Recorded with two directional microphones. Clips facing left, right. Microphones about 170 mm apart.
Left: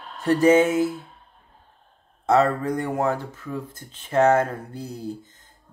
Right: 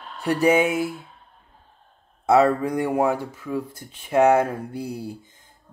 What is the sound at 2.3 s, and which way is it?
Speech, 10° right (ahead or behind).